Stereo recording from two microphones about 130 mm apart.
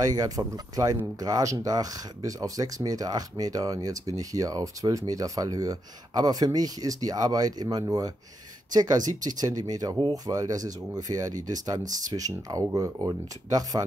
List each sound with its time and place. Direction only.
0.0 s speech: 30° right (ahead or behind)
11.8 s speech: 75° right (ahead or behind)
12.1 s speech: 25° right (ahead or behind)